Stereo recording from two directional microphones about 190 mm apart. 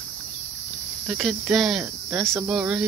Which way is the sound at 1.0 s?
5° right (ahead or behind).